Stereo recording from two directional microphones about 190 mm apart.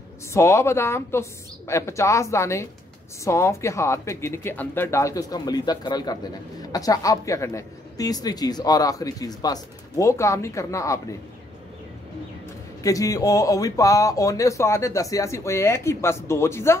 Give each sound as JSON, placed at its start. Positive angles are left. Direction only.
{"t": 0.3, "sound": "speech", "side_deg": 15}
{"t": 12.8, "sound": "speech", "side_deg": 20}